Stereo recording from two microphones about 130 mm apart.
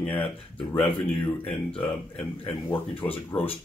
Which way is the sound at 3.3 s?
25° left (ahead or behind).